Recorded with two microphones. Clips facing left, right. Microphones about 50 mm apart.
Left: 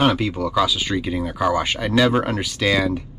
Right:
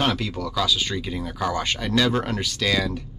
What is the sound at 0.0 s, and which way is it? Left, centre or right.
Speech, centre.